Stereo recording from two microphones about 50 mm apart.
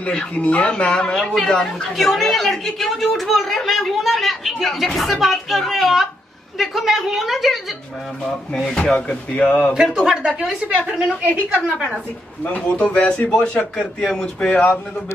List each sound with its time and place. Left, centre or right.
0.0 s a man's voice: left
0.8 s speech: centre
2.0 s a woman's voice: centre
8.5 s speech: centre
8.9 s a man's voice: left
9.8 s speech: centre
10.7 s a woman's voice: centre
12.4 s a man's voice: left
14.0 s speech: centre
14.5 s a man's voice: left